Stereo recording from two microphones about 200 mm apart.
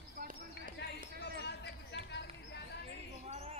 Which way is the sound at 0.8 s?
55° left (ahead or behind).